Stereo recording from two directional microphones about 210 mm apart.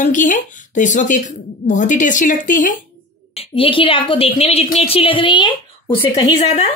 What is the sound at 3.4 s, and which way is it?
A woman's voice, 25° left (ahead or behind).